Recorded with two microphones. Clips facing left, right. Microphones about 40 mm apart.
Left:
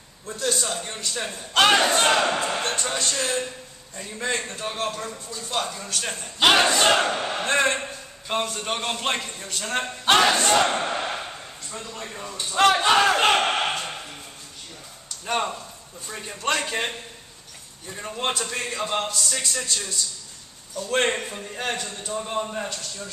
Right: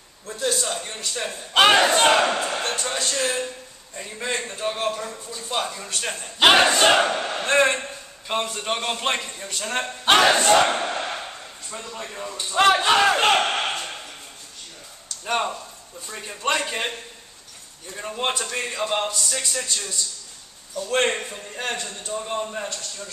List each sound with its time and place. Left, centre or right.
0.4 s a man's voice: centre
1.5 s a man's voice: centre
2.3 s a man's voice: centre
7.1 s a man's voice: centre
10.2 s battle cry: centre
10.7 s a sound: centre
11.7 s speech: centre
15.2 s a man's voice: centre
17.9 s a man's voice: centre